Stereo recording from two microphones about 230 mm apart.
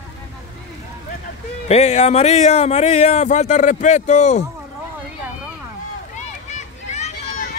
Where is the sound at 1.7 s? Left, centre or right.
Left.